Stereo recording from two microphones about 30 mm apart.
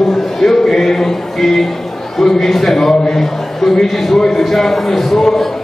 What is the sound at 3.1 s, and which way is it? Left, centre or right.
A man's voice, centre.